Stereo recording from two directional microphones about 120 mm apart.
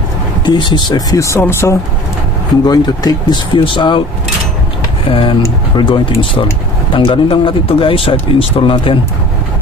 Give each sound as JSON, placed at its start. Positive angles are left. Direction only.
{"t": 0.5, "sound": "speech", "side_deg": 40}
{"t": 2.6, "sound": "speech", "side_deg": 35}
{"t": 5.1, "sound": "speech", "side_deg": 45}